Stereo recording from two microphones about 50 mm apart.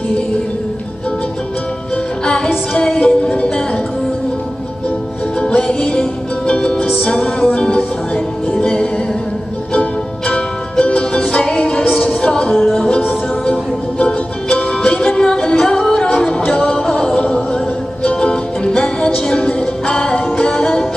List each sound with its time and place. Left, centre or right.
2.2 s music: centre
5.4 s music: centre